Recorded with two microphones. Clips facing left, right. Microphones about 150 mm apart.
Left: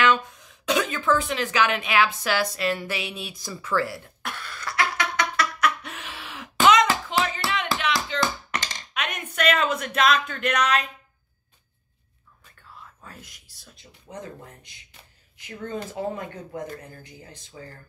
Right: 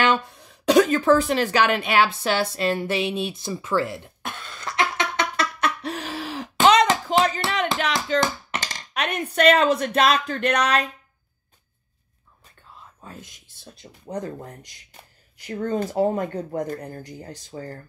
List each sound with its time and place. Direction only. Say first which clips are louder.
0.0 s a sound: right 1 dB; 35° right (ahead or behind)
6.6 s music: right 2 dB; 30° right (ahead or behind)
7.8 s a sound: right 3 dB; 45° right (ahead or behind)
8.7 s speech: right 5 dB; 35° right (ahead or behind)
13.0 s speech: right 7 dB; 20° right (ahead or behind)
13.7 s speech: right 8 dB; 35° right (ahead or behind)